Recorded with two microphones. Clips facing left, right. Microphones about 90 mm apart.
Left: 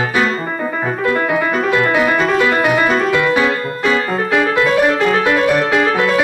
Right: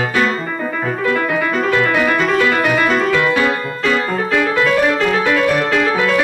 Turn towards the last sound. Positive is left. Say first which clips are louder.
# left 1 dB
turn(degrees=15)  # may be behind; listen again after turning